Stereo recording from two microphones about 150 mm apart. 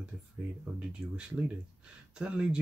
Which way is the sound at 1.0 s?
5° right (ahead or behind).